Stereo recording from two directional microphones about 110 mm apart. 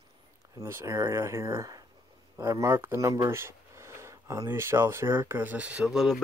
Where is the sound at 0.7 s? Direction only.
25° right (ahead or behind).